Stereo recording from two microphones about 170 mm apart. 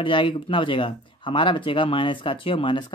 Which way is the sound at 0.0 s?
30° left (ahead or behind).